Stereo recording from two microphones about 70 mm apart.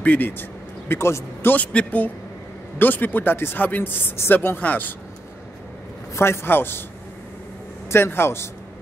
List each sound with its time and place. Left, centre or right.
0.0 s a man's voice: left
1.7 s speech: centre
6.1 s a man's voice: left
7.9 s a man's voice: left